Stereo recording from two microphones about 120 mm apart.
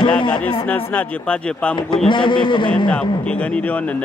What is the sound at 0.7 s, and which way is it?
Speech, 10° left (ahead or behind).